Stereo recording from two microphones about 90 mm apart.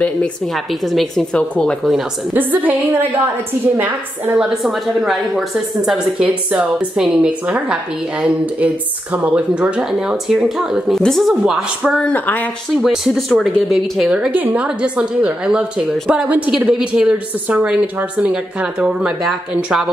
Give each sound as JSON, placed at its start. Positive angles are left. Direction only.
{"t": 0.8, "sound": "speech", "side_deg": 0}
{"t": 1.3, "sound": "speech", "side_deg": 10}
{"t": 2.3, "sound": "a woman's voice", "side_deg": -20}
{"t": 4.4, "sound": "speech", "side_deg": -5}
{"t": 6.2, "sound": "a woman's voice", "side_deg": -15}
{"t": 11.0, "sound": "speech", "side_deg": 5}
{"t": 12.0, "sound": "speech", "side_deg": 20}
{"t": 12.8, "sound": "speech", "side_deg": 0}
{"t": 14.0, "sound": "a woman's voice", "side_deg": -15}